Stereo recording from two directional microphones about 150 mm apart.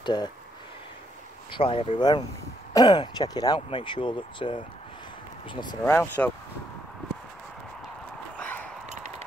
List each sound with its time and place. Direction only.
0.0 s speech: 30° left (ahead or behind)
1.5 s speech: 35° left (ahead or behind)
5.9 s speech: 15° left (ahead or behind)
8.4 s a sound: 10° left (ahead or behind)